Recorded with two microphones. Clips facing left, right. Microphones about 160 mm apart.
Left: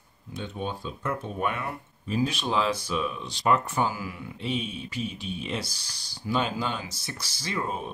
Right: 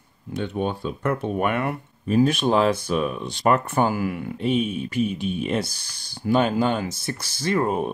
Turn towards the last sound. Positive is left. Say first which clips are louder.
# right 9 dB
turn(degrees=-60)  # may be behind; listen again after turning